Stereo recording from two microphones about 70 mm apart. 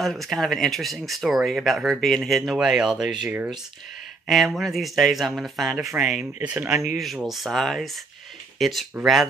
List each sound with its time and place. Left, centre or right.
0.0 s speech: centre
4.3 s speech: centre
6.4 s speech: centre
7.0 s speech: centre